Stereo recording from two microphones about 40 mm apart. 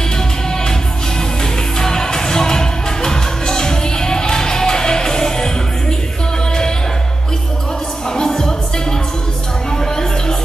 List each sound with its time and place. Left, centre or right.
1.4 s music: centre
8.1 s music: centre
9.7 s a sound: centre